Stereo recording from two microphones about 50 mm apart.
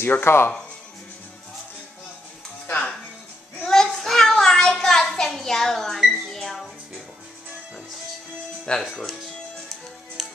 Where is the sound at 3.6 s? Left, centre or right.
Centre.